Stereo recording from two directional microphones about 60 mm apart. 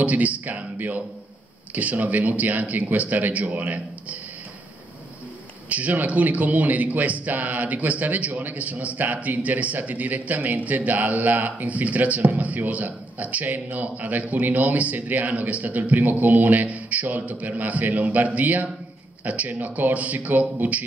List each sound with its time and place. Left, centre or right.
0.0 s a man's voice: right
5.7 s a man's voice: right